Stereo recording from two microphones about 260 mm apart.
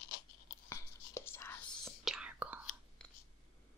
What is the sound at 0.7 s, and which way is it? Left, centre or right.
Whispering, centre.